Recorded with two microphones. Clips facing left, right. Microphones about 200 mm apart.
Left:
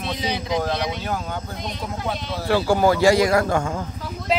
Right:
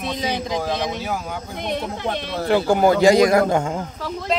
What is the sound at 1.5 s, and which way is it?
Speech, 60° right (ahead or behind).